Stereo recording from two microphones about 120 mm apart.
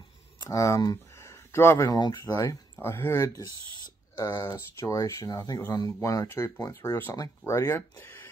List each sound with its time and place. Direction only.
0.4 s speech: 25° left (ahead or behind)
1.9 s speech: 35° left (ahead or behind)
2.7 s speech: 20° left (ahead or behind)